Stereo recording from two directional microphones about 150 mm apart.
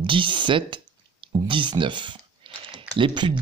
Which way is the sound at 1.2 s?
35° right (ahead or behind).